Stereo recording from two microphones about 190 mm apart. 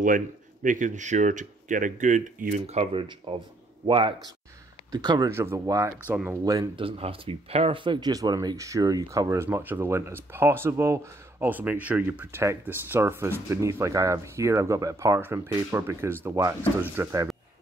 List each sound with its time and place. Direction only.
0.0 s speech: 45° right (ahead or behind); by 17.3 s 15° right (ahead or behind)